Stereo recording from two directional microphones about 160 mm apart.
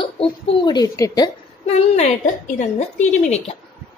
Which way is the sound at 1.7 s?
40° left (ahead or behind).